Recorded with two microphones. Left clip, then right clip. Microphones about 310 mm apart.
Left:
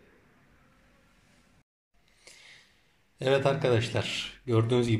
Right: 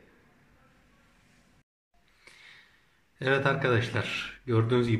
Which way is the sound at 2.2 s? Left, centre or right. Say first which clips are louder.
Even; centre.